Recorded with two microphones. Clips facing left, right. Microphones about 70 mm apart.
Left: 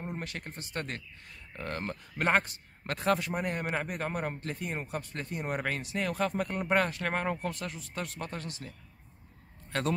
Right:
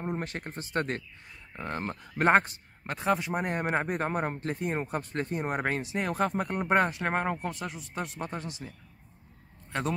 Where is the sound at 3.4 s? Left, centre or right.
Right.